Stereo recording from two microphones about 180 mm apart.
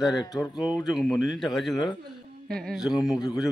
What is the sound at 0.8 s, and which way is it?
Speech, centre (ahead or behind).